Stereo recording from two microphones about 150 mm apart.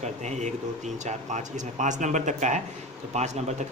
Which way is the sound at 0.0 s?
50° right (ahead or behind).